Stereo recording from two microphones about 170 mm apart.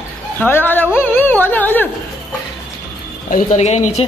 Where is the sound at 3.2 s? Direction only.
50° left (ahead or behind).